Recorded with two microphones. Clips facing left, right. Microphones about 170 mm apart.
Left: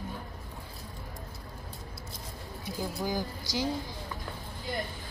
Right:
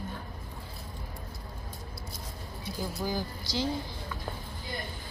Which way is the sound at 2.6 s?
15° left (ahead or behind).